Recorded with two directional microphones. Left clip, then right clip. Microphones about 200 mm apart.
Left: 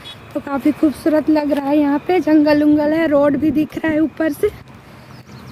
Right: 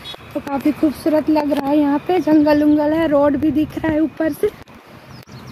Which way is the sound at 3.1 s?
20° left (ahead or behind).